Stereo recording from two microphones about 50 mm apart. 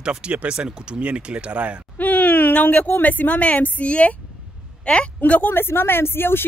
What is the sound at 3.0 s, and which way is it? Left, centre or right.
A woman's voice, left.